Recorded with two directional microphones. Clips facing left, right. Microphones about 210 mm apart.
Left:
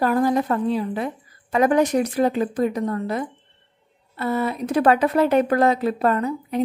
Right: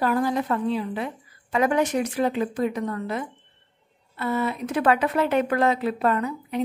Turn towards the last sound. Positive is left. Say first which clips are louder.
# left 3 dB
turn(degrees=40)  # may be behind; listen again after turning